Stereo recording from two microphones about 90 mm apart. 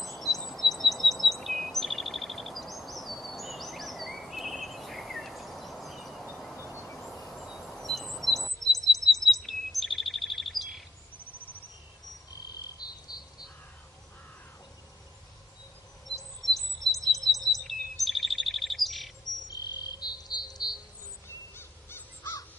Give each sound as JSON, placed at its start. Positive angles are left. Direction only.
{"t": 0.0, "sound": "bird vocalization", "side_deg": 0}
{"t": 6.9, "sound": "train", "side_deg": 0}
{"t": 7.6, "sound": "chirp", "side_deg": 5}
{"t": 16.2, "sound": "chirp", "side_deg": 0}
{"t": 19.7, "sound": "cricket", "side_deg": 50}
{"t": 21.5, "sound": "crow", "side_deg": 25}